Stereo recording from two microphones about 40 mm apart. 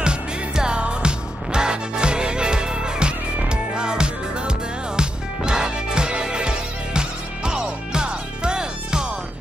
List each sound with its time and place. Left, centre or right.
0.0 s music: right